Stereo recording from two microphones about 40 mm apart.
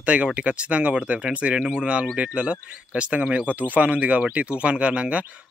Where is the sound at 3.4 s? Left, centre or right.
Right.